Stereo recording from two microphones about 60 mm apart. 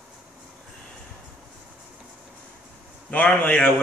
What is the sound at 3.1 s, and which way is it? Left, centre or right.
Speech, left.